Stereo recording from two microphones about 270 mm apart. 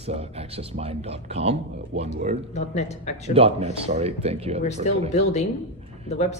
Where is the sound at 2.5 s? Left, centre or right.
Left.